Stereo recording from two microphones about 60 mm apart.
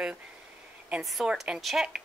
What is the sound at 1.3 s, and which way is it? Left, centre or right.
Speech, centre.